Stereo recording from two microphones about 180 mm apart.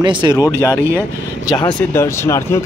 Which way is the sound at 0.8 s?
15° right (ahead or behind).